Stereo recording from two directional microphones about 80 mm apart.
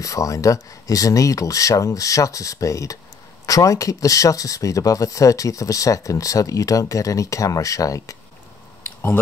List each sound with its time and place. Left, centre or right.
0.0 s speech: left